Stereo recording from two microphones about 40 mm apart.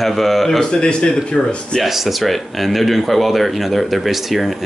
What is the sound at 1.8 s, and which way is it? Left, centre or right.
Speech, centre.